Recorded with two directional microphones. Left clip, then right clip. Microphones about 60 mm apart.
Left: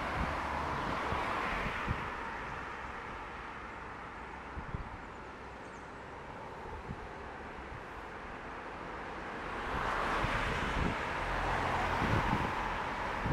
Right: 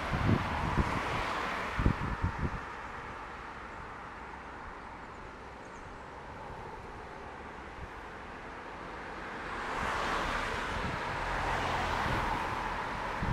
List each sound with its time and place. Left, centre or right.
0.0 s vehicle: right
1.4 s vehicle: right; by 2.6 s centre
9.4 s vehicle: right
9.7 s vehicle: right
10.2 s vehicle: right
11.3 s vehicle: right
12.0 s vehicle: right